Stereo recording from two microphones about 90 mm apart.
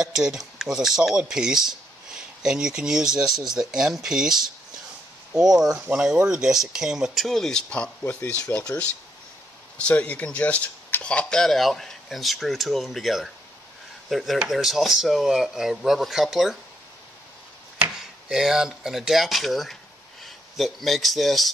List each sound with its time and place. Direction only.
0.0 s speech: 5° right (ahead or behind); by 7.9 s 10° left (ahead or behind)
8.0 s speech: 20° left (ahead or behind)
9.8 s speech: 15° left (ahead or behind); by 16.5 s 5° right (ahead or behind)
18.3 s speech: 5° right (ahead or behind)